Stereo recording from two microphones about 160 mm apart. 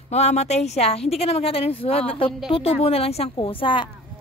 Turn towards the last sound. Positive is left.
turn(degrees=30)  # may be behind; listen again after turning